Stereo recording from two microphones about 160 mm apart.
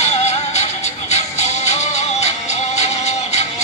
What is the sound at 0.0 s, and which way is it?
Music, 45° left (ahead or behind).